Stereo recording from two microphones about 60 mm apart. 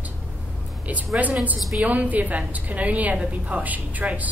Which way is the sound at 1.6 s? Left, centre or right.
Centre.